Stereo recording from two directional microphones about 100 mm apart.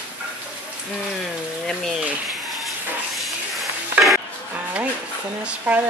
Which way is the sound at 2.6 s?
Centre (ahead or behind).